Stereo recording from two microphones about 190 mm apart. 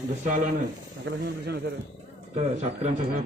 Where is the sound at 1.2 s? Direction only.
55° right (ahead or behind).